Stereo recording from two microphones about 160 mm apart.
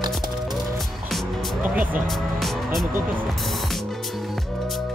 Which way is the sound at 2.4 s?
Centre (ahead or behind).